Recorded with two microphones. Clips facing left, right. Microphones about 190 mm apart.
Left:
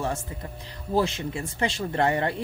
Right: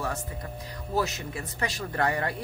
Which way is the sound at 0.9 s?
25° left (ahead or behind).